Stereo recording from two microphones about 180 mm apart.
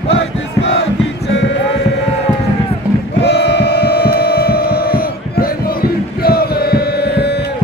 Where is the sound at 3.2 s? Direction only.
70° left (ahead or behind).